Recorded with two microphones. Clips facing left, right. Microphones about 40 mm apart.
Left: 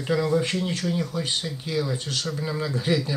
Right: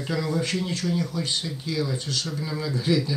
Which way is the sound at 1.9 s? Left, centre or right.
Left.